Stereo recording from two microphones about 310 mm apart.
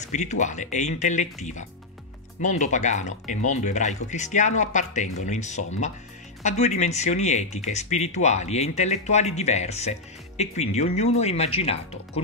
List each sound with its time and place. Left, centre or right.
0.0 s speech: left